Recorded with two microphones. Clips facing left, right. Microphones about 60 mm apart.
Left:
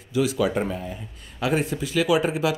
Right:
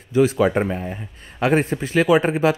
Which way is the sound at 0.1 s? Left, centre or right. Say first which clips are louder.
Right 6 dB; right.